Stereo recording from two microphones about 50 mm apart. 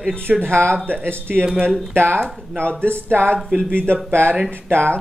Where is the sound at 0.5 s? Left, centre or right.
Right.